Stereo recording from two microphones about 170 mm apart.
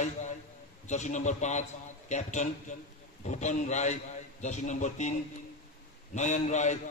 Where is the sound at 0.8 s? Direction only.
45° left (ahead or behind).